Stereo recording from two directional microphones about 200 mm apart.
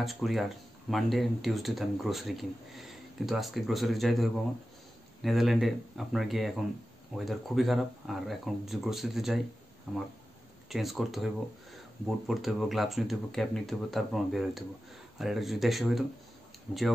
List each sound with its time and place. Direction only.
0.0 s speech: centre (ahead or behind)